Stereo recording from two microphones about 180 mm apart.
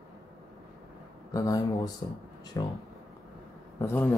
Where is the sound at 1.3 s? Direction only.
20° left (ahead or behind).